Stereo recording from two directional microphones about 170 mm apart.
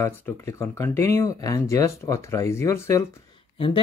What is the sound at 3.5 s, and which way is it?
Speech, 30° left (ahead or behind).